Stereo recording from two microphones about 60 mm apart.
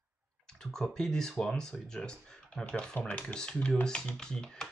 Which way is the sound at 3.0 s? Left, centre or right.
Left.